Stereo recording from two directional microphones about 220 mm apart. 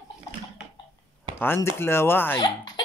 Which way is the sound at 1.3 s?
10° left (ahead or behind).